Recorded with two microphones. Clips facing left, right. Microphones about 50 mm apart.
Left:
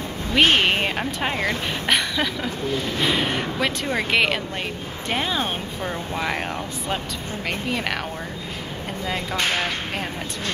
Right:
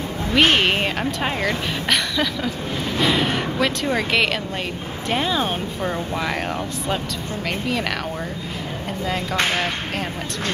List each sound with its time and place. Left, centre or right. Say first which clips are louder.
0.3 s speech: right 1 dB; centre
9.0 s speech: right 2 dB; centre